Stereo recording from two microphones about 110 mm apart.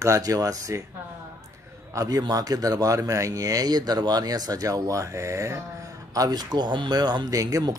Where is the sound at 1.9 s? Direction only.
35° right (ahead or behind).